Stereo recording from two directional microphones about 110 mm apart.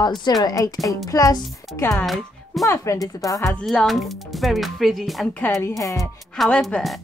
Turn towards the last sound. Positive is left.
turn(degrees=0)  # may be behind; listen again after turning